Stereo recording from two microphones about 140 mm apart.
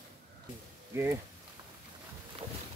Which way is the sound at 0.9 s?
15° right (ahead or behind).